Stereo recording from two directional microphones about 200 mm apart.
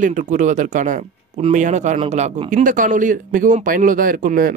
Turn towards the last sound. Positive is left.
turn(degrees=-45)  # may be behind; listen again after turning